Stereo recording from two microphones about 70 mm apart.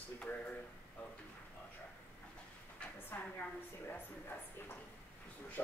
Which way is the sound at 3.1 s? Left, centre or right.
Left.